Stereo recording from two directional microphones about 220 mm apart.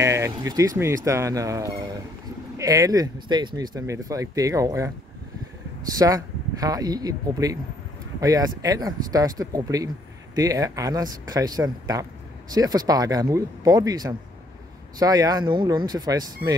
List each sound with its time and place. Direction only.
0.0 s speech: 15° right (ahead or behind)
5.9 s speech: 15° right (ahead or behind)